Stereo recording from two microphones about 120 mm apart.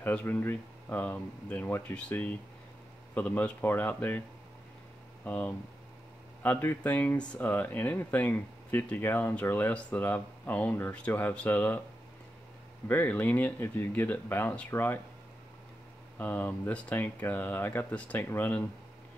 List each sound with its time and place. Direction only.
0.0 s speech: 15° left (ahead or behind)
5.2 s speech: 15° left (ahead or behind)
12.8 s speech: 15° left (ahead or behind)
16.2 s speech: 15° left (ahead or behind)